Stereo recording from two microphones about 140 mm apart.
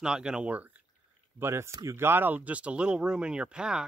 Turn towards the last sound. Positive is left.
turn(degrees=-5)  # may be behind; listen again after turning